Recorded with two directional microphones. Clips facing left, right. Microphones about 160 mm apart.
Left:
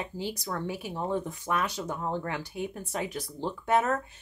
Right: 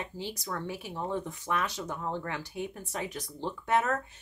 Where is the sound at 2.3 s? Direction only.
10° left (ahead or behind).